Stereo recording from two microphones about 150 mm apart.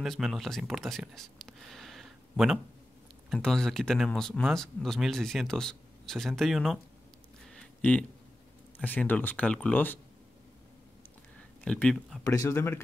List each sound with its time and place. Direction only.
0.0 s speech: centre (ahead or behind)
7.4 s a sound: 5° left (ahead or behind)
8.7 s speech: 10° left (ahead or behind)
11.6 s speech: 5° left (ahead or behind)
12.2 s speech: 20° left (ahead or behind)